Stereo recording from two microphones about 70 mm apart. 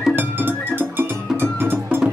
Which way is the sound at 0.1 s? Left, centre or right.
Right.